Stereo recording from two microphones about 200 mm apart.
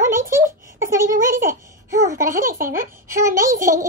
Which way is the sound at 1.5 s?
15° right (ahead or behind).